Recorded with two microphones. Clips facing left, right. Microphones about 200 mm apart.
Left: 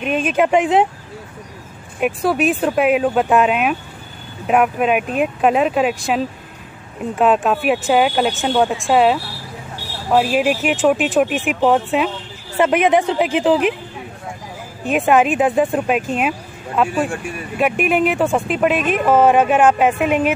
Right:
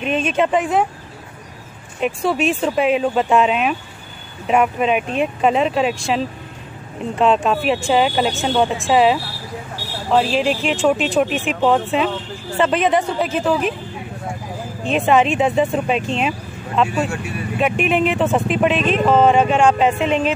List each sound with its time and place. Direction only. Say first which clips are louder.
0.0 s speech: left 1 dB; 5° left (ahead or behind)
0.5 s speech: left 3 dB; 20° left (ahead or behind)
2.0 s speech: left 2 dB; 5° left (ahead or behind)
14.9 s speech: left 1 dB; centre (ahead or behind)
17.0 s speech: left 1 dB; 50° left (ahead or behind)
17.6 s speech: left 1 dB; 5° left (ahead or behind)